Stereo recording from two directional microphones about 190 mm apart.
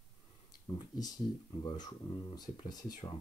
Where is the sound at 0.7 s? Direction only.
20° left (ahead or behind).